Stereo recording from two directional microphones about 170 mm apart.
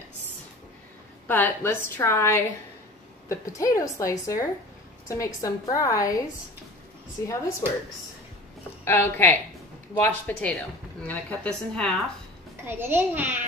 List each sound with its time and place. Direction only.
1.2 s a woman's voice: 10° left (ahead or behind)
8.8 s a woman's voice: 15° left (ahead or behind)
12.6 s a child's voice: 10° right (ahead or behind)